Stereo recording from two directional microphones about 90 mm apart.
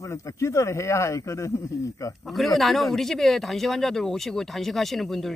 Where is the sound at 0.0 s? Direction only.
35° left (ahead or behind).